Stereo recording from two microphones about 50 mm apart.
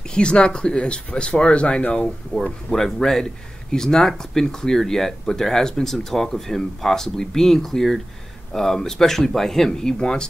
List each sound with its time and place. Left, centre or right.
0.1 s speech: centre
2.4 s speech: centre